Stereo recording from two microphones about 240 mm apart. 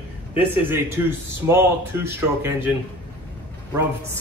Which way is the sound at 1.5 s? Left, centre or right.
Centre.